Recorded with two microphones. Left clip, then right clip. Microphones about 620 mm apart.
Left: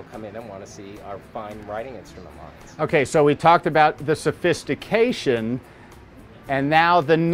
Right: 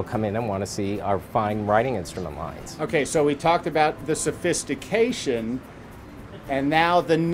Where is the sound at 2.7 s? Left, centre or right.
Left.